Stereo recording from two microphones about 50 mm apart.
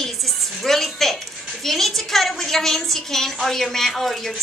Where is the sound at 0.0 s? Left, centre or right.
Centre.